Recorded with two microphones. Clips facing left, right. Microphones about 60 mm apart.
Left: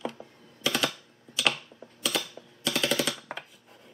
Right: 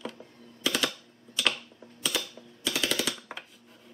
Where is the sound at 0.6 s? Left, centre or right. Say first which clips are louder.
Left 1 dB; centre.